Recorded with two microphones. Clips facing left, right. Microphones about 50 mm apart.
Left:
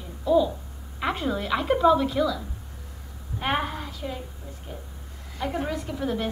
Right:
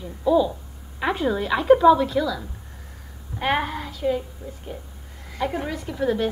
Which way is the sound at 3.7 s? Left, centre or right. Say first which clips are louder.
Right 4 dB; centre.